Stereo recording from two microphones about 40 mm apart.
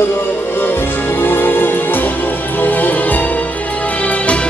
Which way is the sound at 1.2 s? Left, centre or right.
Left.